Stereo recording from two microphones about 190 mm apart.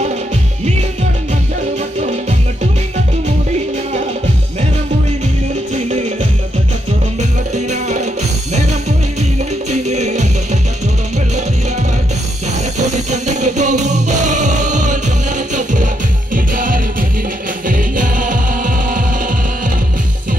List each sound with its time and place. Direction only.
2.0 s music: 35° right (ahead or behind)
5.9 s music: 35° right (ahead or behind)
7.2 s music: 40° right (ahead or behind)
9.7 s music: 35° right (ahead or behind)
12.7 s music: 40° right (ahead or behind)